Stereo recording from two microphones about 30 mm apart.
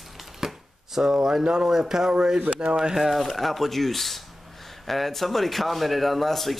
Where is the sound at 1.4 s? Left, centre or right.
Right.